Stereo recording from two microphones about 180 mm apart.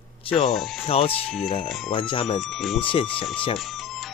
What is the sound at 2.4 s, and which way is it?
Speech, centre (ahead or behind).